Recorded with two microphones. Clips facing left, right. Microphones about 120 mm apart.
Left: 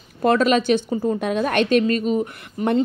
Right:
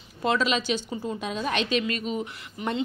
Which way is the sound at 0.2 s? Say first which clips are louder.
Left 8 dB; 50° left (ahead or behind).